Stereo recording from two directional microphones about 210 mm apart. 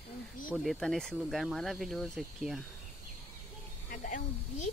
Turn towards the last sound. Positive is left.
turn(degrees=40)  # may be behind; listen again after turning